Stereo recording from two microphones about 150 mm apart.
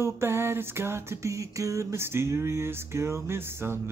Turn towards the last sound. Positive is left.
turn(degrees=-15)  # may be behind; listen again after turning